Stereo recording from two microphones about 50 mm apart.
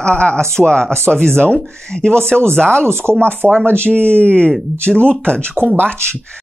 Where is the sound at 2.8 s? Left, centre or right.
Right.